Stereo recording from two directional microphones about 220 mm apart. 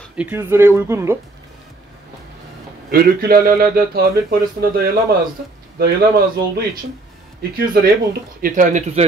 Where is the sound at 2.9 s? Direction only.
45° right (ahead or behind).